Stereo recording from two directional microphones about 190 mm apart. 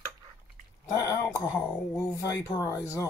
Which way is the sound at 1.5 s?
15° left (ahead or behind).